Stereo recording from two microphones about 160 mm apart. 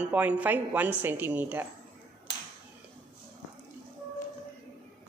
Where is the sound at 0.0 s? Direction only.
10° right (ahead or behind).